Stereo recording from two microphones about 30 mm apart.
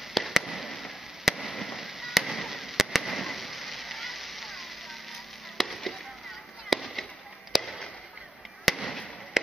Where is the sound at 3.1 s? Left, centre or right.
Centre.